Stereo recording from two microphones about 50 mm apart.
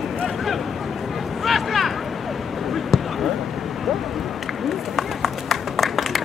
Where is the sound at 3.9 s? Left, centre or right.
Centre.